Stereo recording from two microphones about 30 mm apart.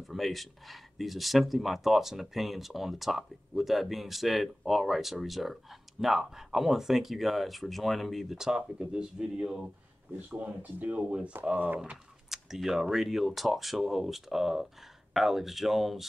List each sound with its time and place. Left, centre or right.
0.0 s speech: centre
8.4 s speech: right
10.1 s speech: right
11.0 s speech: right
11.5 s speech: right
12.3 s computer keyboard: centre
12.9 s speech: centre